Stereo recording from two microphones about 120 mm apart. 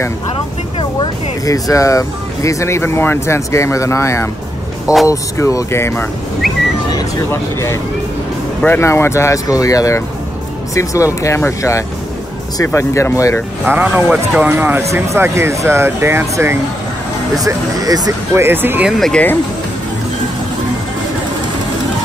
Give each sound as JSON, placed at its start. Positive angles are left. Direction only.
{"t": 1.4, "sound": "speech", "side_deg": 25}
{"t": 7.2, "sound": "speech", "side_deg": 20}
{"t": 13.7, "sound": "speech", "side_deg": -15}
{"t": 18.3, "sound": "speech", "side_deg": -20}
{"t": 18.9, "sound": "speech", "side_deg": 5}